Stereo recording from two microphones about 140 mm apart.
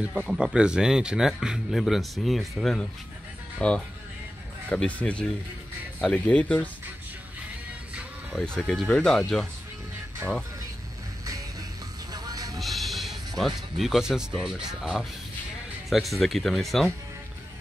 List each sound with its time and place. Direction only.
0.0 s speech: 5° right (ahead or behind)
8.4 s speech: 5° left (ahead or behind)
12.1 s music: 25° right (ahead or behind)
12.5 s music: centre (ahead or behind)
13.4 s speech: centre (ahead or behind)